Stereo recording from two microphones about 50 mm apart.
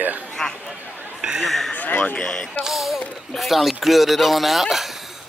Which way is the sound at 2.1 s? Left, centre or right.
Centre.